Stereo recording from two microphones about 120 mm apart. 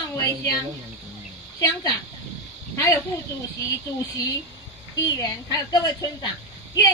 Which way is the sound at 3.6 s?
30° left (ahead or behind).